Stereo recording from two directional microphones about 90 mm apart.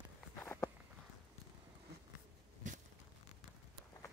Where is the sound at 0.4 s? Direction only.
30° left (ahead or behind).